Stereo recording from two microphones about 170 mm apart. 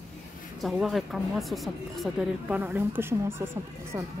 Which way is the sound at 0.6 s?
Centre (ahead or behind).